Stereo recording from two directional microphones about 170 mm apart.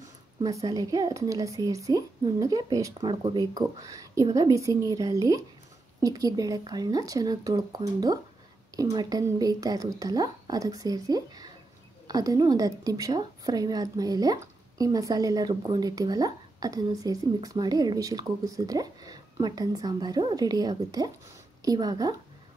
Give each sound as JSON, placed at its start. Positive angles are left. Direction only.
{"t": 0.4, "sound": "a woman's voice", "side_deg": -20}